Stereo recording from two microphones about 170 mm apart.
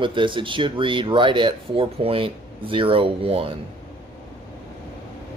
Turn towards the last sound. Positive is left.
turn(degrees=-35)  # may be behind; listen again after turning